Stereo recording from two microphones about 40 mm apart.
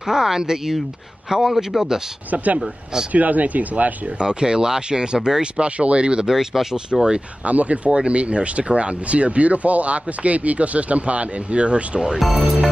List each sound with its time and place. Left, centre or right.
0.0 s speech: centre
2.3 s speech: right
2.6 s speech: centre
3.1 s speech: right
4.2 s speech: centre
6.2 s speech: centre
7.4 s speech: right